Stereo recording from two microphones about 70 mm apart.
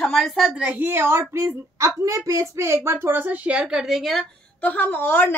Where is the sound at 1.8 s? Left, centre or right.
Right.